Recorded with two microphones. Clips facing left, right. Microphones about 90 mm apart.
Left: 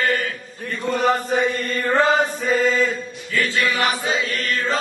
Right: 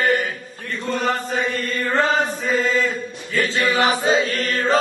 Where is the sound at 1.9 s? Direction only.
5° left (ahead or behind).